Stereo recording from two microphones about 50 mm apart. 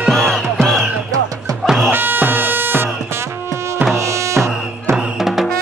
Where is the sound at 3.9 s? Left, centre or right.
Right.